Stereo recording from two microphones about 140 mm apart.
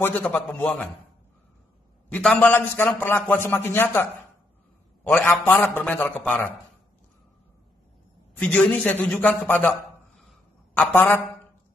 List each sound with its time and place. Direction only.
0.0 s a man's voice: 10° left (ahead or behind)
2.0 s a man's voice: 10° left (ahead or behind)
8.4 s a man's voice: 10° left (ahead or behind)
10.8 s a man's voice: 15° left (ahead or behind)